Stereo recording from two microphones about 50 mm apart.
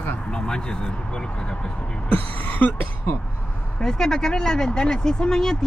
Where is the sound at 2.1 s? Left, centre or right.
Left.